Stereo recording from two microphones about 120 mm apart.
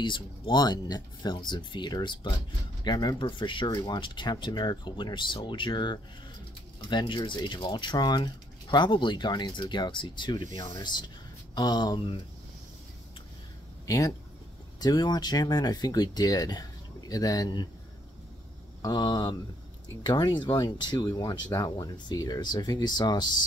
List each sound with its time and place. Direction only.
0.0 s speech: 40° left (ahead or behind)
13.8 s speech: 30° left (ahead or behind)
18.8 s speech: 35° left (ahead or behind)